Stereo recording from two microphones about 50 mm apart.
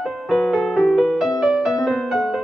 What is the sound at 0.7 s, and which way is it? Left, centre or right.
Music, centre.